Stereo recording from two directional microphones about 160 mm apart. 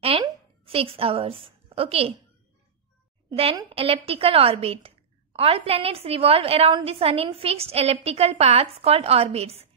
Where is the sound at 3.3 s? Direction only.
40° right (ahead or behind).